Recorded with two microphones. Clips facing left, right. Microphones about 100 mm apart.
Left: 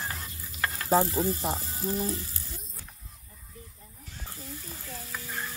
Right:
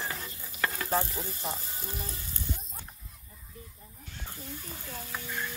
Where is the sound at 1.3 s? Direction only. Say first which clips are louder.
Left 7 dB; 30° left (ahead or behind).